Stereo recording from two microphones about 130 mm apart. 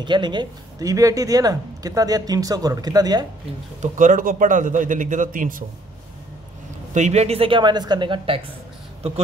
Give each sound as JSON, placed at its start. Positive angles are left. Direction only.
{"t": 0.0, "sound": "speech", "side_deg": -35}
{"t": 3.8, "sound": "a man's voice", "side_deg": -80}
{"t": 6.9, "sound": "speech", "side_deg": -60}